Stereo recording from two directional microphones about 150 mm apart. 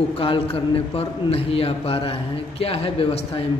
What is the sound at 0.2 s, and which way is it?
A man's voice, 40° left (ahead or behind).